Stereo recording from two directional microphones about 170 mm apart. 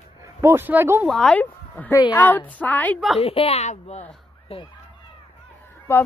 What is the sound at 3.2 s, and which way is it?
Speech, 35° left (ahead or behind).